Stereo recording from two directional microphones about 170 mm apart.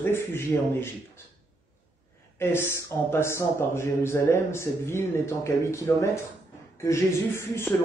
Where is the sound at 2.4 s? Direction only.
15° left (ahead or behind).